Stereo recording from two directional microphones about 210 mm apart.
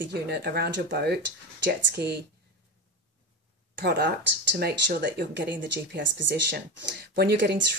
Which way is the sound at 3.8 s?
50° right (ahead or behind).